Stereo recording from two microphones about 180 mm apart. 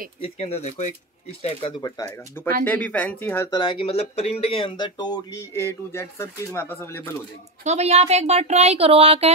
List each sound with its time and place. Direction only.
0.2 s speech: 35° left (ahead or behind)
1.8 s speech: 20° left (ahead or behind)
2.6 s speech: 10° left (ahead or behind)
7.6 s speech: 35° right (ahead or behind)